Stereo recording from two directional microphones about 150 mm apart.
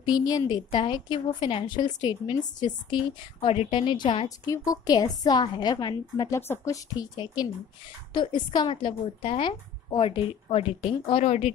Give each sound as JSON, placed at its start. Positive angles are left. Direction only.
{"t": 0.1, "sound": "a woman's voice", "side_deg": 25}